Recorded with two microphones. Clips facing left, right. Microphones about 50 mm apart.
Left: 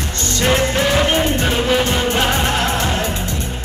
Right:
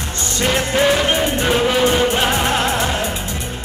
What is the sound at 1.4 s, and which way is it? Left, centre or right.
Music, centre.